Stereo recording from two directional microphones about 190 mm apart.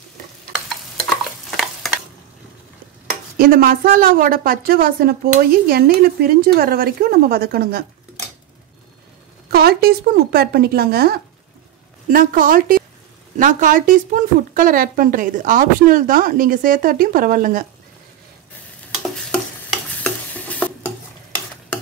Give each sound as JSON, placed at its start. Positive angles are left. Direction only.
{"t": 1.2, "sound": "stir", "side_deg": 0}
{"t": 3.3, "sound": "speech", "side_deg": -50}
{"t": 9.5, "sound": "speech", "side_deg": -55}
{"t": 19.0, "sound": "stir", "side_deg": 5}